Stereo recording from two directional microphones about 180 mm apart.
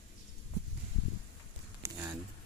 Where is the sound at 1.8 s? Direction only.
10° right (ahead or behind).